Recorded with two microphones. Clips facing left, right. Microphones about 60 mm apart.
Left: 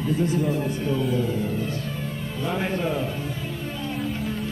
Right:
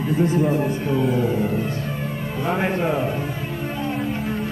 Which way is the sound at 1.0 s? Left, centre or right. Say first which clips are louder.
Right 4 dB; right.